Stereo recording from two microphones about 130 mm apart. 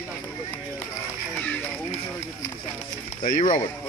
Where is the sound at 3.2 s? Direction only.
70° left (ahead or behind).